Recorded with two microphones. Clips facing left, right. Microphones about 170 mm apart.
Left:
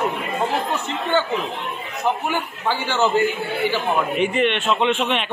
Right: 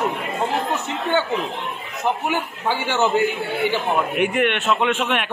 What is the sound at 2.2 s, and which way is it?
Speech, 15° right (ahead or behind).